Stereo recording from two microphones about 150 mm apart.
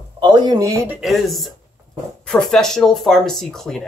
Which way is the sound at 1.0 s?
Centre (ahead or behind).